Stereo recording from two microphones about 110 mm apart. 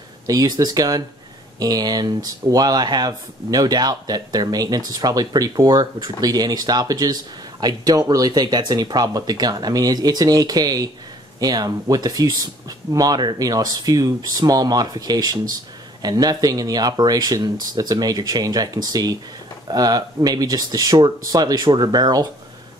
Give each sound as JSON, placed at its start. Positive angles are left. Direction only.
{"t": 0.3, "sound": "speech", "side_deg": -35}